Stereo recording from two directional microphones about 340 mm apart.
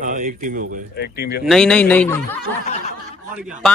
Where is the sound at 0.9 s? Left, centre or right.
Left.